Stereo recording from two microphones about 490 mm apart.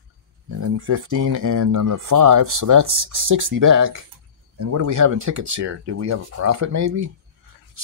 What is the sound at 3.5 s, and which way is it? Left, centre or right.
Speech, right.